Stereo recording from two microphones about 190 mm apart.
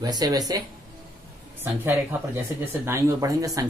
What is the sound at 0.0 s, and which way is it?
Speech, 20° right (ahead or behind).